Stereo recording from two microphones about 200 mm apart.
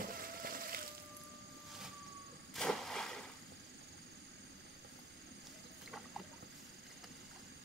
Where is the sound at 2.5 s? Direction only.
Centre (ahead or behind).